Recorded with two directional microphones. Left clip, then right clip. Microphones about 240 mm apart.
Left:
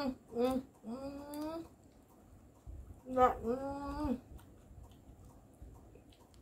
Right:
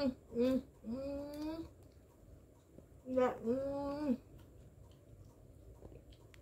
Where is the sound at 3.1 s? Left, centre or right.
Left.